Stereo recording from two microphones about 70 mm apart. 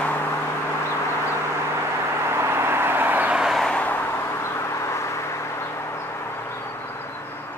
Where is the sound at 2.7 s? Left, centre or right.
Right.